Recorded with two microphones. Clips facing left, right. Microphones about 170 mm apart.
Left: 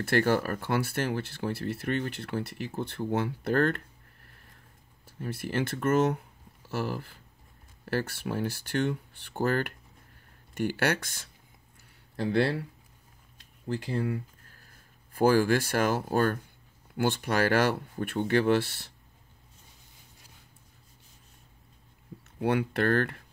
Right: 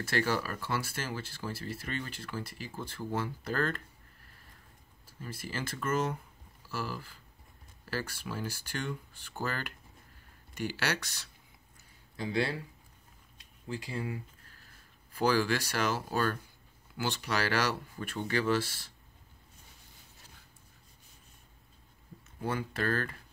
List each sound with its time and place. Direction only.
0.0 s speech: 55° left (ahead or behind)
5.0 s speech: 60° left (ahead or behind)
13.7 s speech: 65° left (ahead or behind)
15.1 s speech: 50° left (ahead or behind)
22.4 s speech: 70° left (ahead or behind)